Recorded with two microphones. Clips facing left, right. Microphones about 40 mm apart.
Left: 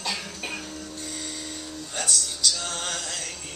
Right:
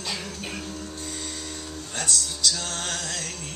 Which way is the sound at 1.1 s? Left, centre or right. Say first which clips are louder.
Right 1 dB; left.